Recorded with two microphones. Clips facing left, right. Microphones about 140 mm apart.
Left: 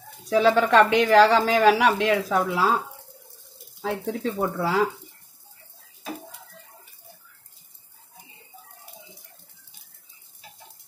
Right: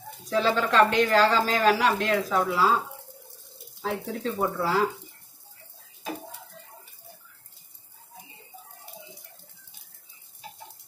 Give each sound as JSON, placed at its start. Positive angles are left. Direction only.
{"t": 0.3, "sound": "speech", "side_deg": 65}
{"t": 3.8, "sound": "speech", "side_deg": 65}